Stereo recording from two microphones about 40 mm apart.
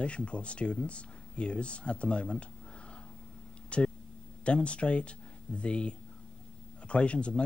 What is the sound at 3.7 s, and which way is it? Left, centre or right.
Speech, left.